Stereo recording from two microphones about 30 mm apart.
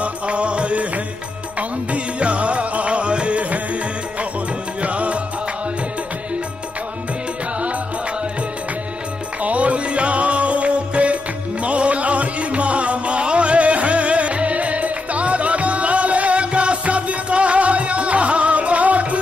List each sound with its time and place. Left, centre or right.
0.0 s music: right
4.8 s music: right
9.4 s music: right